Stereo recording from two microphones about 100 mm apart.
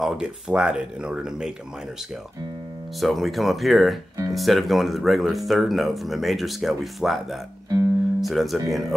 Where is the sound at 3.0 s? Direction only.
Centre (ahead or behind).